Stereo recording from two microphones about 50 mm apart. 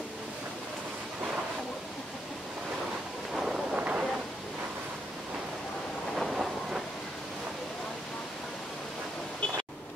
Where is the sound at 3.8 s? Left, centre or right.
Right.